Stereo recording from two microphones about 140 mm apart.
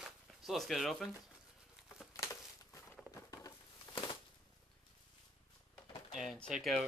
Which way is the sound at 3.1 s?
25° left (ahead or behind).